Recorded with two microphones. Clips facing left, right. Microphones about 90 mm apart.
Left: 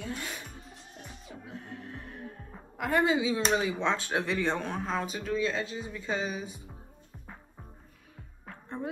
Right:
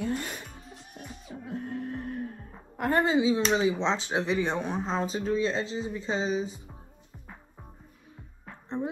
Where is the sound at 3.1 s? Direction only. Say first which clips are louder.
Right 4 dB; 25° right (ahead or behind).